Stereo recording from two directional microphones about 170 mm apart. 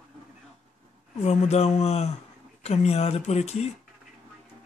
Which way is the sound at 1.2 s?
40° left (ahead or behind).